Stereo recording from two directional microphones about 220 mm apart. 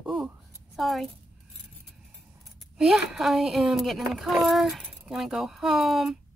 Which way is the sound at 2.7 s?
Centre (ahead or behind).